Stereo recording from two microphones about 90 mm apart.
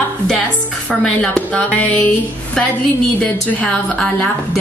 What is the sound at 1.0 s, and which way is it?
A woman's voice, 10° left (ahead or behind).